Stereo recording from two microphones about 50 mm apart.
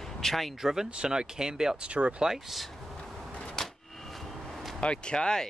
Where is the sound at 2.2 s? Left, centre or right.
Centre.